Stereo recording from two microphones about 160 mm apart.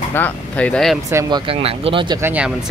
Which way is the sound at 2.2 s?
10° right (ahead or behind).